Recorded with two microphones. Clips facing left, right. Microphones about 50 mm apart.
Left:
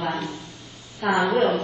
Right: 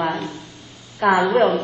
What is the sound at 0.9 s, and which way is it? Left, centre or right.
Speech, right.